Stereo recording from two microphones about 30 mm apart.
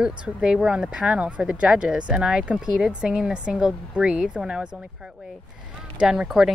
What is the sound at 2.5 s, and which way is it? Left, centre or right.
Speech, right.